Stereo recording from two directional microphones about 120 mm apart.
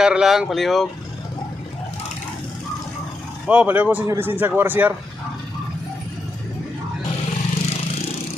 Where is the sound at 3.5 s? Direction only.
10° right (ahead or behind).